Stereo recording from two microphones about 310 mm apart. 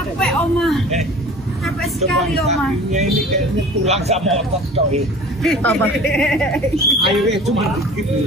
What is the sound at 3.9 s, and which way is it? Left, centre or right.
Speech, right.